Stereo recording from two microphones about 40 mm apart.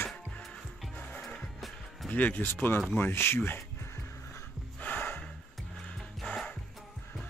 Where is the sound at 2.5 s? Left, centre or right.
Left.